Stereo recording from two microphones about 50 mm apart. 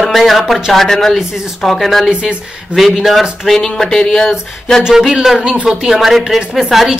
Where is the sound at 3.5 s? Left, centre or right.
Centre.